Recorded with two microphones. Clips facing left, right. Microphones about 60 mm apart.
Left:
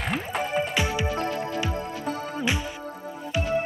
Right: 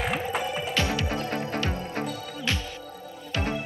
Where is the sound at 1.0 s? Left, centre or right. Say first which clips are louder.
Left 3 dB; left.